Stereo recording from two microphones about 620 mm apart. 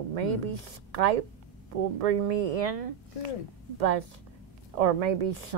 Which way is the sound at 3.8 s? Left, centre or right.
Right.